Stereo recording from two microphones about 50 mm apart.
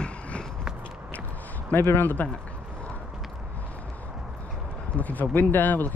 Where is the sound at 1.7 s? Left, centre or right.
Left.